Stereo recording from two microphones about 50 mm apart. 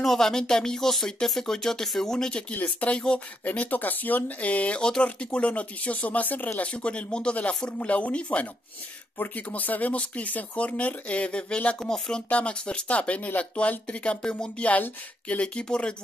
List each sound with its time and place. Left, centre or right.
0.0 s speech: centre
2.5 s speech: left
6.6 s speech: left
11.8 s speech: centre
12.3 s speech: left